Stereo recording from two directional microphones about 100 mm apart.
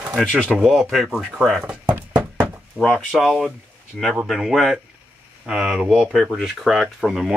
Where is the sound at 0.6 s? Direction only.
5° right (ahead or behind).